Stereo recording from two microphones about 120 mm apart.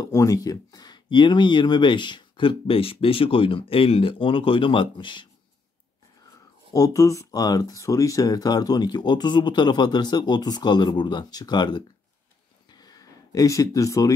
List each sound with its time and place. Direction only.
0.0 s speech: 25° left (ahead or behind)
6.7 s speech: 30° left (ahead or behind)
12.6 s a sound: 35° left (ahead or behind)